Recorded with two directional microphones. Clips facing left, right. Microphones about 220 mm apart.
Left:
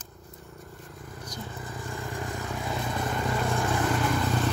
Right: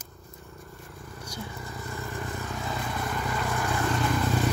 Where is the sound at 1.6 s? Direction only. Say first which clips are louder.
Left 1 dB; 15° left (ahead or behind).